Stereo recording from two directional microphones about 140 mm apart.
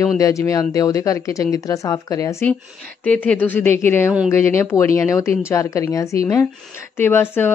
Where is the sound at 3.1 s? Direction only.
10° left (ahead or behind).